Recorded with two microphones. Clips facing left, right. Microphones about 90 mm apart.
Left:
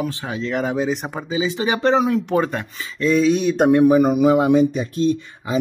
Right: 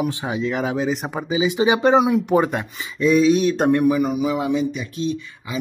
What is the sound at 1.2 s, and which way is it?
Speech, 15° right (ahead or behind).